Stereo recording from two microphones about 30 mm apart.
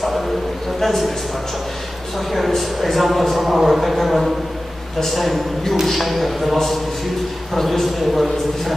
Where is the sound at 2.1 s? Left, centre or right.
Centre.